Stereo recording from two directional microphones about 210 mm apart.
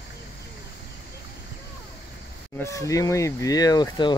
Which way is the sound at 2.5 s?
15° left (ahead or behind).